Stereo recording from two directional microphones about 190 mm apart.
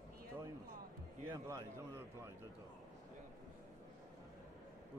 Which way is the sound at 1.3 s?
15° right (ahead or behind).